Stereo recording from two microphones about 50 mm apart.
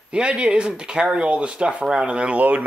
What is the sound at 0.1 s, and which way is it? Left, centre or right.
A man's voice, right.